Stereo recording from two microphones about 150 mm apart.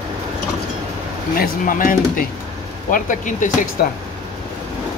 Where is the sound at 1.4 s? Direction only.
65° left (ahead or behind).